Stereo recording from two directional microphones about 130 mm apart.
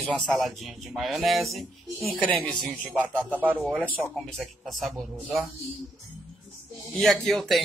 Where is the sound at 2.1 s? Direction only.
10° left (ahead or behind).